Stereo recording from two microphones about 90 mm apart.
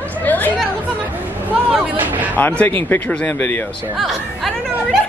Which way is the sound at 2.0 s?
20° right (ahead or behind).